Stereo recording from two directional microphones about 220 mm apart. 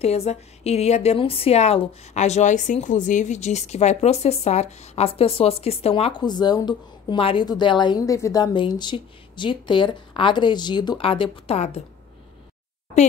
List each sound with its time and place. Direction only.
0.0 s a woman's voice: 30° left (ahead or behind)